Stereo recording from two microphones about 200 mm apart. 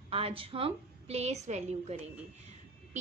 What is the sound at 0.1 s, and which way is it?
A woman's voice, 25° right (ahead or behind).